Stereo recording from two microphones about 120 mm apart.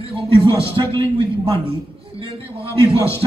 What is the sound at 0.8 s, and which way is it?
A man's voice, 45° right (ahead or behind).